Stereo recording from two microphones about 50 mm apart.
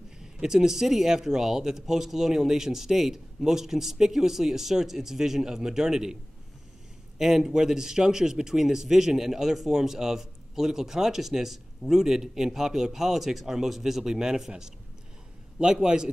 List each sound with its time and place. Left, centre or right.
0.2 s a man's voice: centre
7.2 s a man's voice: centre